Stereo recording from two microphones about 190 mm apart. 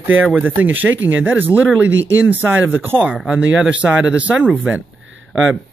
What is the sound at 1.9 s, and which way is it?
Speech, 80° right.